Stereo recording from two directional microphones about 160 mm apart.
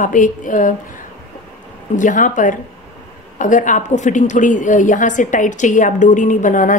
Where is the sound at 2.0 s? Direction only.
55° left (ahead or behind).